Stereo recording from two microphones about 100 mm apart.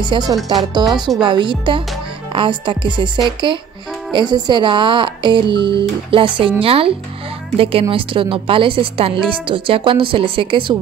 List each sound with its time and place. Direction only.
0.0 s speech: 50° right (ahead or behind)
0.4 s speech: centre (ahead or behind)
1.2 s a woman's voice: 55° right (ahead or behind)